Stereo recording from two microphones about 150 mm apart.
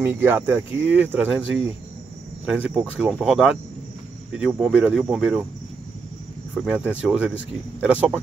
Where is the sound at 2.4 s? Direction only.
5° right (ahead or behind).